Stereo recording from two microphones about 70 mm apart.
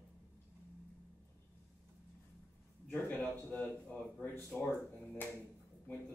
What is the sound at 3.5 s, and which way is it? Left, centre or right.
Speech, centre.